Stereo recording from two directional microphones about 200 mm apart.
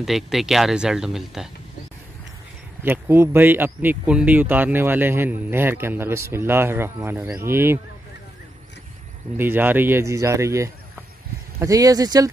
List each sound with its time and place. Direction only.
0.0 s speech: centre (ahead or behind)
2.8 s speech: 10° right (ahead or behind)
9.4 s speech: 10° right (ahead or behind)